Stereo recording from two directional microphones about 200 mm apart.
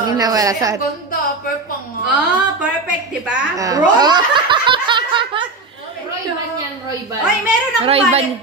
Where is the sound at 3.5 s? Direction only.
15° right (ahead or behind).